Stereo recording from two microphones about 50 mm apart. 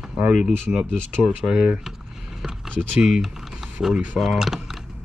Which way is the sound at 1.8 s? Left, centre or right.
Centre.